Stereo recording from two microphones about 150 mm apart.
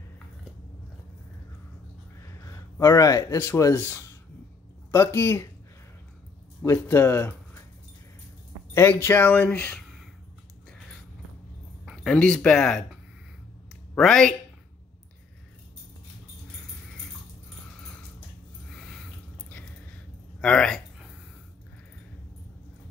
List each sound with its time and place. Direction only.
2.4 s speech: 20° left (ahead or behind)
6.6 s speech: 15° left (ahead or behind)
8.7 s speech: 15° left (ahead or behind)
11.8 s speech: centre (ahead or behind)
13.9 s speech: 5° left (ahead or behind)
18.7 s a sound: centre (ahead or behind)
20.3 s a sound: 5° left (ahead or behind)